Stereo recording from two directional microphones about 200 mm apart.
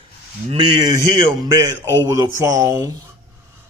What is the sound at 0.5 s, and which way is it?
Speech, 25° right (ahead or behind).